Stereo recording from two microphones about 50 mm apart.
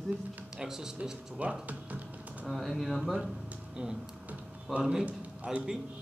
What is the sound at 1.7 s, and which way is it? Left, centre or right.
Music, right.